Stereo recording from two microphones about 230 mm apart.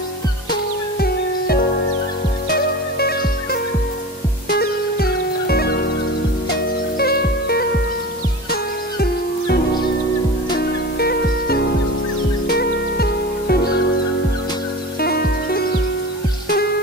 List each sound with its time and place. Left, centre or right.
0.9 s music: left
4.5 s music: left
7.0 s music: left
10.6 s music: left
15.0 s music: left